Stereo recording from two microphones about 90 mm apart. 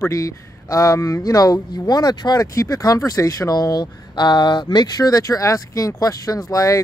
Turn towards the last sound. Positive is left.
turn(degrees=40)  # may be behind; listen again after turning